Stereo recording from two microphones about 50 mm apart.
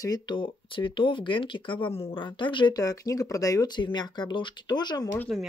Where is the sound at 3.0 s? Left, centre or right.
Left.